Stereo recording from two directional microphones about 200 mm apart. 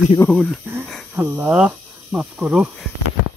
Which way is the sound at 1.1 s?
10° right (ahead or behind).